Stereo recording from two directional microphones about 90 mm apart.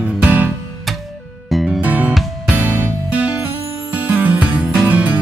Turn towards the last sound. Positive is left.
turn(degrees=-15)  # may be behind; listen again after turning